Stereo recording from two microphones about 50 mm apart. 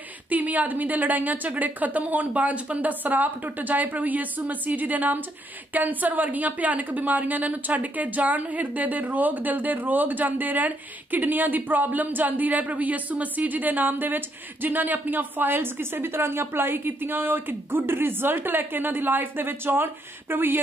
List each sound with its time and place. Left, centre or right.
0.3 s a woman's voice: right